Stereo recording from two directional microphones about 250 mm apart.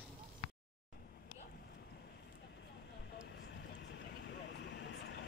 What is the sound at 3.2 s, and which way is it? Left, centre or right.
Vehicle, left.